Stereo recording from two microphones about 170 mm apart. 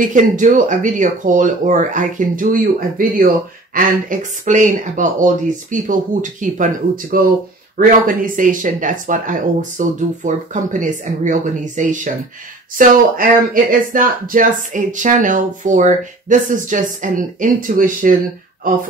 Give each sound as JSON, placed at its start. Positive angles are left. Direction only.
{"t": 0.0, "sound": "speech", "side_deg": -50}